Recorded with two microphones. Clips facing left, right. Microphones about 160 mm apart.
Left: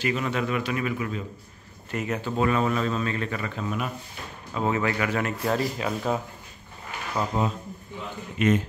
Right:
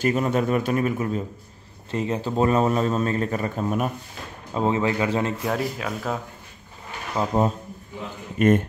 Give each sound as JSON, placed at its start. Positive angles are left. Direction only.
{"t": 0.0, "sound": "a man's voice", "side_deg": -45}
{"t": 1.9, "sound": "a man's voice", "side_deg": -30}
{"t": 4.6, "sound": "speech", "side_deg": -25}
{"t": 5.4, "sound": "speech", "side_deg": -5}
{"t": 7.2, "sound": "speech", "side_deg": -25}
{"t": 8.4, "sound": "a man's voice", "side_deg": -50}